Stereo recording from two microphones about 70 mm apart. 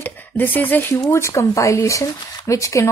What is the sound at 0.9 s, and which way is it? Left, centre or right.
Speech, left.